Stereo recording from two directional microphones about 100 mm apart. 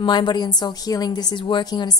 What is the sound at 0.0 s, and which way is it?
A woman's voice, 50° left (ahead or behind).